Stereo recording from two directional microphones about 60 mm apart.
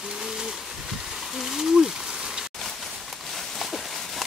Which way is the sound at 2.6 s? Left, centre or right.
Centre.